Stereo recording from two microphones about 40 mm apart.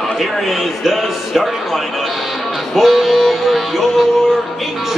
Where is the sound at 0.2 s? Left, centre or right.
Centre.